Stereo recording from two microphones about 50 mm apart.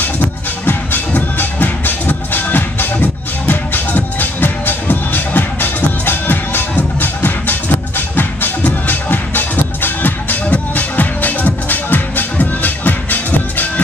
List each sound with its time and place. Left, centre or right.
0.7 s music: left